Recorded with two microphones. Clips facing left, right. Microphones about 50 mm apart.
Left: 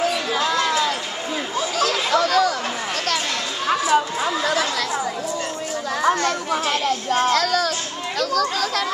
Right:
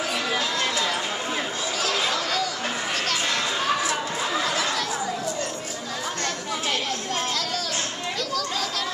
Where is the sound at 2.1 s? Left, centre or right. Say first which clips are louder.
Left 9 dB; left.